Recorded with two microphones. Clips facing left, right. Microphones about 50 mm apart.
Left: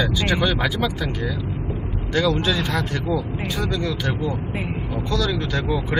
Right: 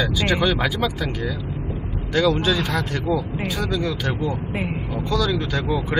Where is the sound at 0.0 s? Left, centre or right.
Centre.